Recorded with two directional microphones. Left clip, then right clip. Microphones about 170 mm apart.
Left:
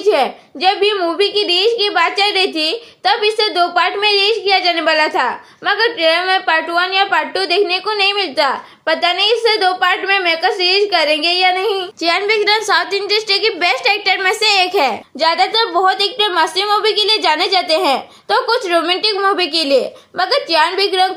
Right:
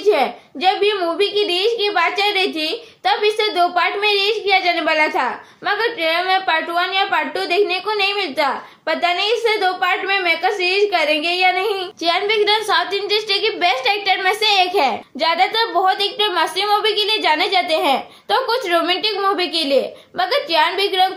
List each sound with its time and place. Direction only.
0.0 s a woman's voice: 30° left (ahead or behind)